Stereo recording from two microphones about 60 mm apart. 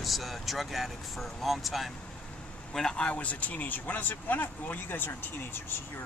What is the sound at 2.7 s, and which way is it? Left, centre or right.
Speech, centre.